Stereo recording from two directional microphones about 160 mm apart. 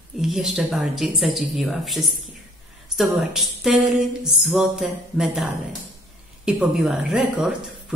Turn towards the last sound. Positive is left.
turn(degrees=-5)  # may be behind; listen again after turning